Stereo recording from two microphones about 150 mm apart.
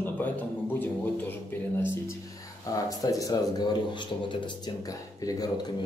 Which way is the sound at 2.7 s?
25° left (ahead or behind).